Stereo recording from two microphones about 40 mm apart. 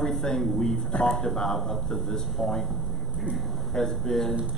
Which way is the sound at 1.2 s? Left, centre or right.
Centre.